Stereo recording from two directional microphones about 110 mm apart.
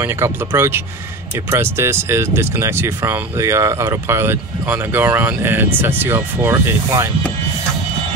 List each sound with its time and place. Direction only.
0.0 s speech: 20° right (ahead or behind)